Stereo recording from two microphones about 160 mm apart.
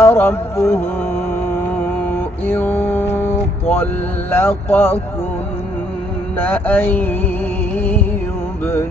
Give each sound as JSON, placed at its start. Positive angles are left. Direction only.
{"t": 0.0, "sound": "music", "side_deg": 15}
{"t": 2.1, "sound": "mantra", "side_deg": 10}
{"t": 6.4, "sound": "music", "side_deg": 10}